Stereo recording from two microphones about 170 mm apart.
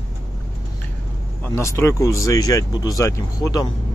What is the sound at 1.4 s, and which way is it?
Speech, 15° left (ahead or behind).